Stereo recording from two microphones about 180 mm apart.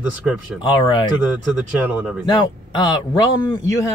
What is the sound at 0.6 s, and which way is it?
Speech, 25° left (ahead or behind).